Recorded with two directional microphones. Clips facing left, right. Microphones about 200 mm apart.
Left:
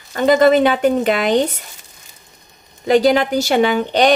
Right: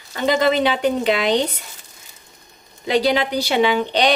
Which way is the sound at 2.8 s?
50° left (ahead or behind).